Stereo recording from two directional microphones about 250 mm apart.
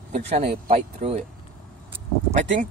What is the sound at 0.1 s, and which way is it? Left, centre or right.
Speech, right.